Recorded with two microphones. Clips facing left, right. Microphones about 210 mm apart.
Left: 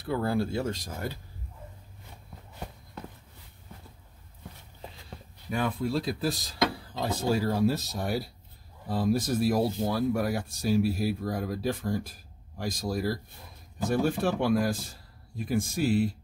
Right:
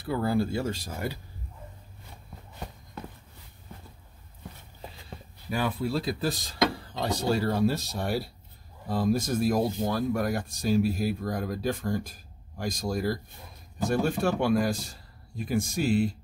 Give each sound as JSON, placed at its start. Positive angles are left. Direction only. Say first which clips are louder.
{"t": 0.0, "sound": "speech", "louder": "right 1 dB", "side_deg": -5}
{"t": 5.5, "sound": "speech", "louder": "even", "side_deg": -5}